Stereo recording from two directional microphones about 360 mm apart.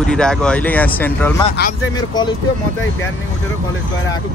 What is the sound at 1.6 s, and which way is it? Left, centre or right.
Speech, left.